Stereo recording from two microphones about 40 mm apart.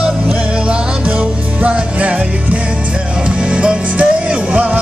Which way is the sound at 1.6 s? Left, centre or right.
Right.